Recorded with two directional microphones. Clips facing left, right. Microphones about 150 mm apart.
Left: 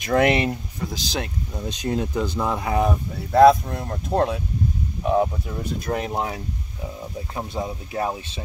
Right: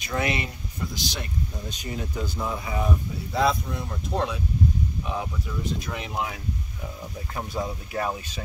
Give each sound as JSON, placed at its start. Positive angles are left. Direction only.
{"t": 0.0, "sound": "speech", "side_deg": 70}
{"t": 1.8, "sound": "speech", "side_deg": 90}
{"t": 3.3, "sound": "speech", "side_deg": 55}
{"t": 7.3, "sound": "speech", "side_deg": 25}